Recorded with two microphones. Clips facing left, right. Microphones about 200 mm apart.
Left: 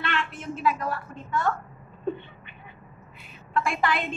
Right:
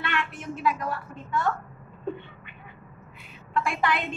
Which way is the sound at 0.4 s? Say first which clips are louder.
Left 2 dB; 20° right (ahead or behind).